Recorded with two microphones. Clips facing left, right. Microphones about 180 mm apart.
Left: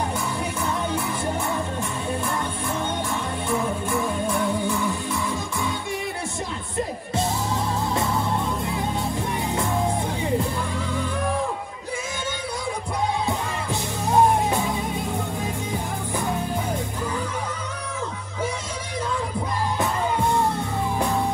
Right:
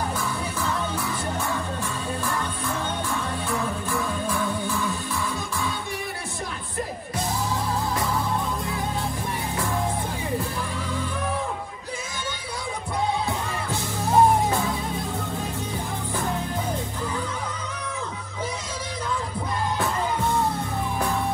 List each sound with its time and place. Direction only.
0.6 s music: 20° left (ahead or behind)
3.1 s music: 20° left (ahead or behind)
13.7 s music: 15° left (ahead or behind)